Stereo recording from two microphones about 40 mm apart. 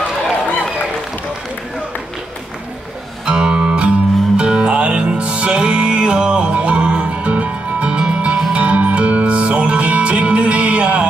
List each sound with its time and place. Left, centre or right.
3.3 s music: right
8.5 s music: right